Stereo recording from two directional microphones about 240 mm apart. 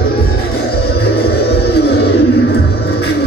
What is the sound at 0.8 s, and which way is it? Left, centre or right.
Music, left.